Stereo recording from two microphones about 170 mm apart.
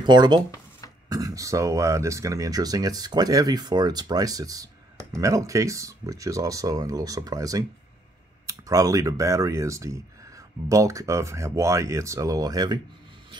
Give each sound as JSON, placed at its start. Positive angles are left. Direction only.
{"t": 0.0, "sound": "speech", "side_deg": -25}